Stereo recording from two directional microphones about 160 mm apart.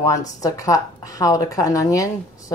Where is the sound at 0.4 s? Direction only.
20° left (ahead or behind).